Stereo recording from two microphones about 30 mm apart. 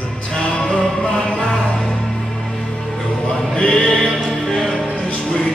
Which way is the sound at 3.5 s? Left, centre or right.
Left.